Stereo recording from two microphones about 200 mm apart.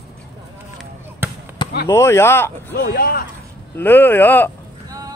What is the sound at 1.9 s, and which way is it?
Speech, 10° left (ahead or behind).